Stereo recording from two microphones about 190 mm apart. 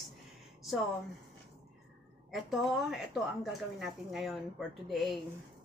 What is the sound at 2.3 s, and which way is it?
A woman's voice, centre (ahead or behind).